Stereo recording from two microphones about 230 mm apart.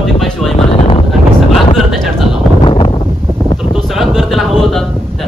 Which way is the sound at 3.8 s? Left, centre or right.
Centre.